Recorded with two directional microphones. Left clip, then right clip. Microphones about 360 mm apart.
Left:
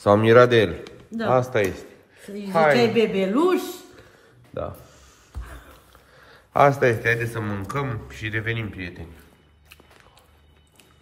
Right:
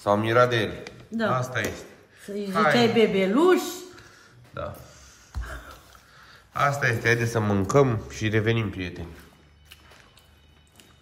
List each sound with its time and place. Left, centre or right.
0.0 s a man's voice: left
2.8 s a man's voice: centre
6.1 s a sound: centre
7.0 s a man's voice: centre